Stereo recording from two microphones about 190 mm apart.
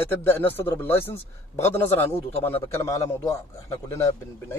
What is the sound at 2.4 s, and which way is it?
Speech, 10° left (ahead or behind).